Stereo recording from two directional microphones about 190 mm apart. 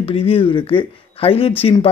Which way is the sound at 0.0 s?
30° left (ahead or behind).